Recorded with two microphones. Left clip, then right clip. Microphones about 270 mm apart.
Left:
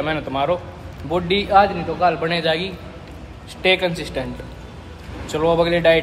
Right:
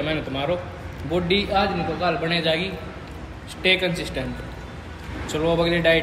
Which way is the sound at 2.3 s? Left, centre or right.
Centre.